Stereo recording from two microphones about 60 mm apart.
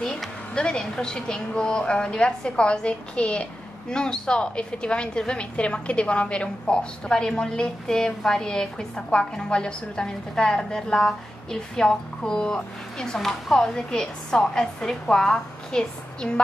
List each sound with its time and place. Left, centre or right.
0.6 s a woman's voice: centre